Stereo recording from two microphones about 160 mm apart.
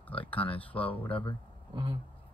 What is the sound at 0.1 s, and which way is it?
Speech, 10° left (ahead or behind).